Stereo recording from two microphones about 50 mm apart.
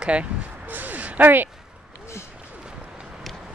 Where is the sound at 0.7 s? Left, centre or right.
Right.